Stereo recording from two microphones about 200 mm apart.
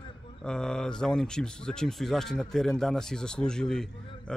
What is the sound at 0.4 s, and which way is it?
Speech, 5° left (ahead or behind).